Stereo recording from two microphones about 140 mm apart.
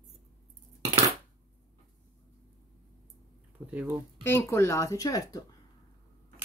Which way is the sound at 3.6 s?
10° right (ahead or behind).